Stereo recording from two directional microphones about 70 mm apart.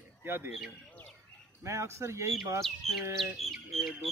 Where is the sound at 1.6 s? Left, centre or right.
Right.